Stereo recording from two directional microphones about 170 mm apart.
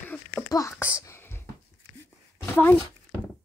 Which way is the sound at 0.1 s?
10° left (ahead or behind).